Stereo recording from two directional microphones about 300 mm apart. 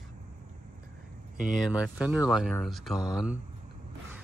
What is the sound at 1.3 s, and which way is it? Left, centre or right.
Speech, centre.